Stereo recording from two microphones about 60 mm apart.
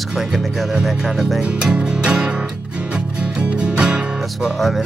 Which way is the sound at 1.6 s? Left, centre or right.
Centre.